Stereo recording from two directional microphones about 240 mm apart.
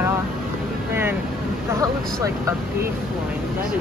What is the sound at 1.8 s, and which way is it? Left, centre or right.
Speech, centre.